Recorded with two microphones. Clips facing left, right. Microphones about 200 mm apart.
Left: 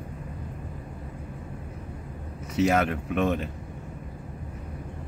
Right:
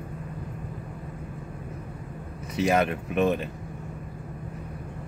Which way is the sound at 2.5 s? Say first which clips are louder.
Even; 30° right (ahead or behind).